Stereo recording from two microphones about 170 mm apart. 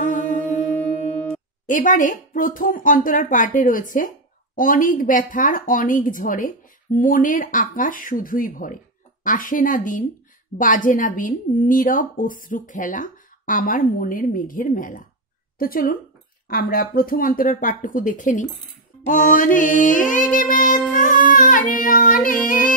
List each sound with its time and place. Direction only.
0.0 s music: 50° left (ahead or behind)
1.7 s a woman's voice: 50° left (ahead or behind)
20.9 s child singing: 50° left (ahead or behind)